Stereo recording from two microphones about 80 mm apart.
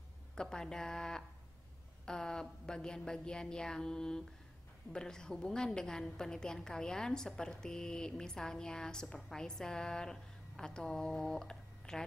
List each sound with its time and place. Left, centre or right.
0.4 s a woman's voice: centre